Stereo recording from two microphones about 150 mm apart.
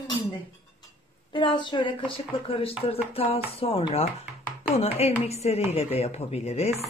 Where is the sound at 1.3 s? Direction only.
35° left (ahead or behind).